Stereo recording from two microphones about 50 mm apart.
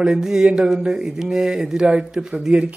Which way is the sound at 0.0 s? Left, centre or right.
Centre.